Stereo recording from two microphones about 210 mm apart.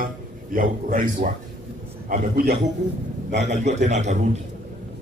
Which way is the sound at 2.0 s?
40° right (ahead or behind).